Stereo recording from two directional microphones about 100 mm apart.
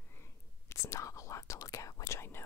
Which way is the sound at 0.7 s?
30° left (ahead or behind).